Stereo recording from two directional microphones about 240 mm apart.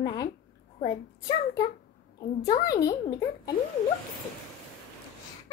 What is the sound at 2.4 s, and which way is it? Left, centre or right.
A child's voice, centre.